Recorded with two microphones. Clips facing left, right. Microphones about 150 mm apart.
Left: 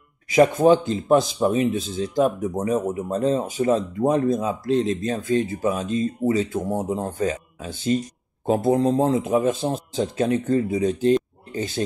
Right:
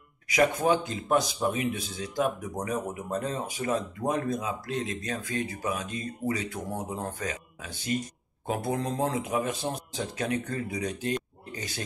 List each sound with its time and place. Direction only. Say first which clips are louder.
0.7 s a man's voice: left 9 dB; 30° left (ahead or behind)